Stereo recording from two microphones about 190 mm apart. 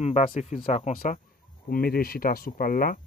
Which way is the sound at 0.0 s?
40° left (ahead or behind).